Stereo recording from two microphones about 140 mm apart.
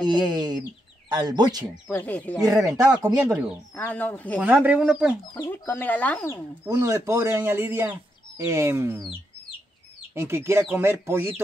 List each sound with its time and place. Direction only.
0.0 s speech: 30° right (ahead or behind)
1.9 s speech: 15° left (ahead or behind)
2.4 s speech: 20° right (ahead or behind)
3.7 s speech: 15° left (ahead or behind)
4.4 s speech: 10° right (ahead or behind)
5.5 s speech: 15° left (ahead or behind)
6.6 s speech: 20° right (ahead or behind)
10.1 s speech: 15° right (ahead or behind)